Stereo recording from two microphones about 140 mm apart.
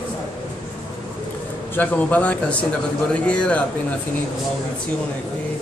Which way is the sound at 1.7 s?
10° left (ahead or behind).